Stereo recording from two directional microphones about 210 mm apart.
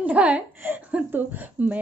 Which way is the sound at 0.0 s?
5° right (ahead or behind).